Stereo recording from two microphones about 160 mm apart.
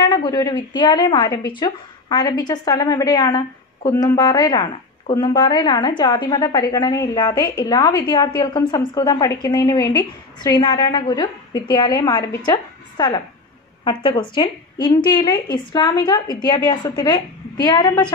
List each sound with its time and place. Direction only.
0.1 s a woman's voice: 25° left (ahead or behind)